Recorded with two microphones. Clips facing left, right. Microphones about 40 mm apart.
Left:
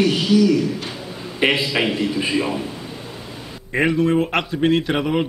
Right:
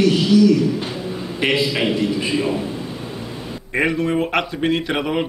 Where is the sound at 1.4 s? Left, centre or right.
Left.